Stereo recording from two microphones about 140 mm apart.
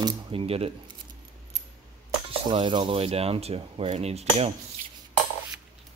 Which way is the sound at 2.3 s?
35° right (ahead or behind).